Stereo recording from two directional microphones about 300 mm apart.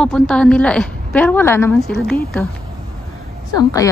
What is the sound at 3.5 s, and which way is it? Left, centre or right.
Speech, centre.